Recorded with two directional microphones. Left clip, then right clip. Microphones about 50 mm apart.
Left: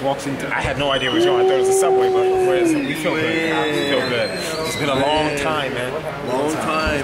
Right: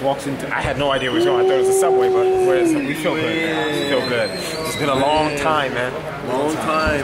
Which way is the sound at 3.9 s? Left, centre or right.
Right.